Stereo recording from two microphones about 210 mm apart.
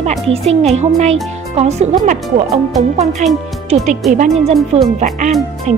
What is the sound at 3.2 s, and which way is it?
Speech, 35° right (ahead or behind).